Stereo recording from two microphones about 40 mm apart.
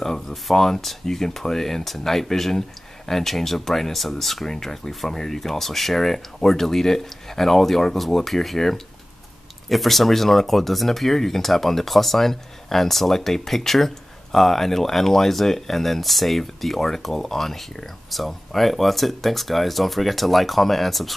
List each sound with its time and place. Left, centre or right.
0.0 s speech: centre